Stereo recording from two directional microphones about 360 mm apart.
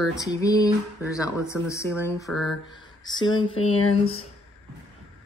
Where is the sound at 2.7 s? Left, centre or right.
Centre.